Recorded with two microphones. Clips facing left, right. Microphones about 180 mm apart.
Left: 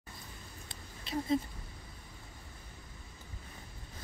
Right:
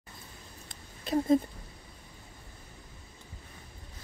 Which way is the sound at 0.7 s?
50° right (ahead or behind).